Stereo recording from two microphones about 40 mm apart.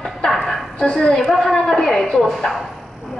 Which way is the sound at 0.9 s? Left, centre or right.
Centre.